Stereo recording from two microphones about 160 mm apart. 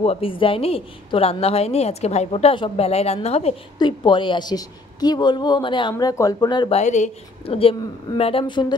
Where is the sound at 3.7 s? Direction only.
30° left (ahead or behind).